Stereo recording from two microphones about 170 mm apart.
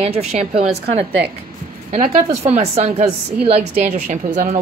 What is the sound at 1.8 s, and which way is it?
A woman's voice, 40° right (ahead or behind).